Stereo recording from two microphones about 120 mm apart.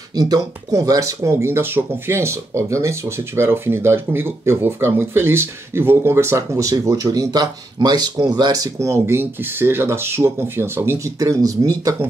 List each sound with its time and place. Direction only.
0.1 s speech: 35° right (ahead or behind)